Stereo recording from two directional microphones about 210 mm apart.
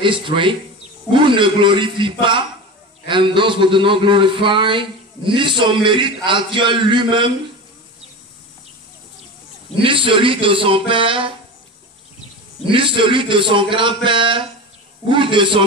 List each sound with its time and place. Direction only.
0.0 s a man's voice: 25° right (ahead or behind)
9.8 s a man's voice: 25° right (ahead or behind)
12.6 s a man's voice: 25° right (ahead or behind)